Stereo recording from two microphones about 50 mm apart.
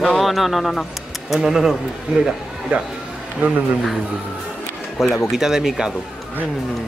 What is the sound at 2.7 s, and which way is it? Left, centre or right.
Speech, right.